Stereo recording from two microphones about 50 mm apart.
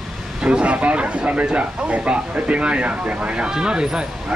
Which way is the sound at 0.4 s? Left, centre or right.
Right.